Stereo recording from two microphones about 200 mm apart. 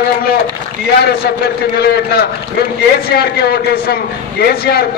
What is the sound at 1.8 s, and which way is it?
A man's voice, 55° left (ahead or behind).